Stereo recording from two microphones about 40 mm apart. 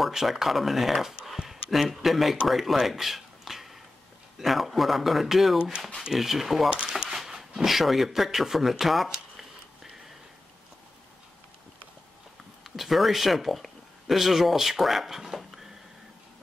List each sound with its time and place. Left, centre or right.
0.1 s speech: centre
2.4 s a sound: centre
4.4 s speech: centre
6.7 s speech: right
7.1 s speech: centre
12.7 s speech: centre
15.3 s a sound: centre